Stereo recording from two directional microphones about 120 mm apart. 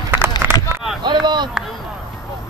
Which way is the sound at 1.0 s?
40° right (ahead or behind).